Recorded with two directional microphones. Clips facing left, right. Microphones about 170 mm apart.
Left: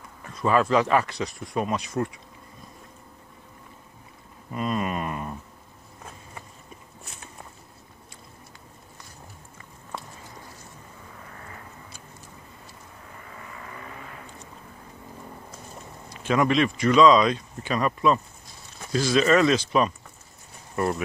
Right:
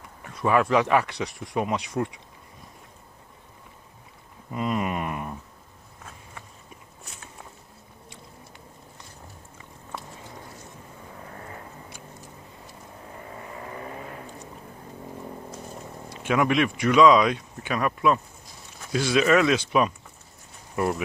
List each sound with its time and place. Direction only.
0.2 s speech: 10° right (ahead or behind)
4.5 s a sound: 15° right (ahead or behind)
13.2 s vehicle: 25° right (ahead or behind)
16.2 s speech: 10° right (ahead or behind)